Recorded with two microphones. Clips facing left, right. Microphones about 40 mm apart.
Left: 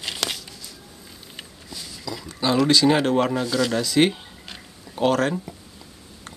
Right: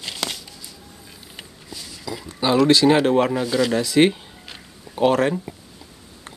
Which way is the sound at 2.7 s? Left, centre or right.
Centre.